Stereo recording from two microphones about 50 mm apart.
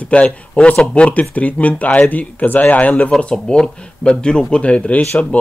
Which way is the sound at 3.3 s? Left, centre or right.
Centre.